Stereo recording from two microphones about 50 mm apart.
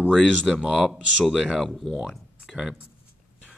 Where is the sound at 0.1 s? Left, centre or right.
Centre.